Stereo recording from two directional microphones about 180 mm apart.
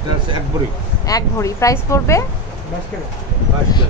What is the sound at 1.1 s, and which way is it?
A woman's voice, 20° left (ahead or behind).